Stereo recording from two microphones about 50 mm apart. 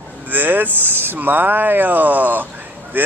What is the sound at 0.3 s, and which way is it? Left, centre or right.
Speech, right.